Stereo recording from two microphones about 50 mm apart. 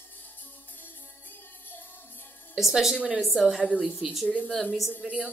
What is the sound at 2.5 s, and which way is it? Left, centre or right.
A woman's voice, centre.